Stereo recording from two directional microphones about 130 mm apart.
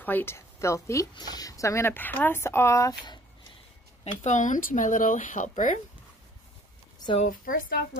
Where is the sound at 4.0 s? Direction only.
65° left (ahead or behind).